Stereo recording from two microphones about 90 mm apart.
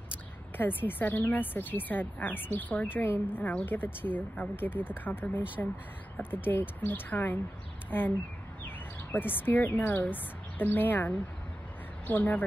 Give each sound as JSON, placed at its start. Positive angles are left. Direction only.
{"t": 0.6, "sound": "speech", "side_deg": 20}
{"t": 9.1, "sound": "speech", "side_deg": 20}